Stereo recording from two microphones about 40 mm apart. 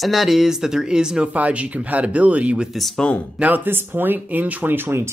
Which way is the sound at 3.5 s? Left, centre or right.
Right.